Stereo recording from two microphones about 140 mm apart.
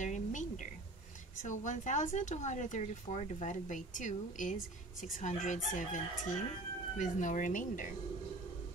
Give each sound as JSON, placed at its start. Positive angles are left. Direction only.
{"t": 0.0, "sound": "a sound", "side_deg": 65}
{"t": 1.4, "sound": "speech", "side_deg": 60}
{"t": 5.8, "sound": "chicken", "side_deg": 70}
{"t": 7.0, "sound": "speech", "side_deg": 65}